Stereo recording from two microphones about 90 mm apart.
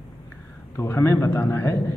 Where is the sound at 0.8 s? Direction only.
30° left (ahead or behind).